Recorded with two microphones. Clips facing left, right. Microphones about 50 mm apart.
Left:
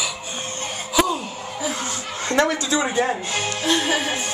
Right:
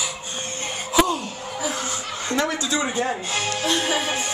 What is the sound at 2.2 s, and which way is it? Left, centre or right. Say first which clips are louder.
Fowl: left 4 dB; left.